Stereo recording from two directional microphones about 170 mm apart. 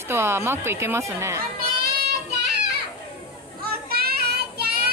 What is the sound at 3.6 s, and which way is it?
Children playing, 65° right (ahead or behind).